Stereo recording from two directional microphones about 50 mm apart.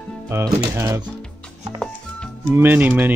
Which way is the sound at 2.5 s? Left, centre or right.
Right.